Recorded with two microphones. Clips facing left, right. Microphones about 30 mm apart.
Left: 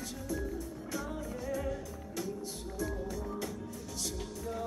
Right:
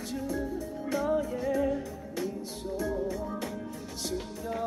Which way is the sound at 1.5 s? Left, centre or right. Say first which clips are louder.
Right 8 dB; right.